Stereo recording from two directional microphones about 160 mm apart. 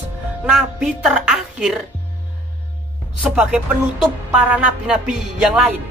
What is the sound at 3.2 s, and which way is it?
A woman's voice, 10° right (ahead or behind).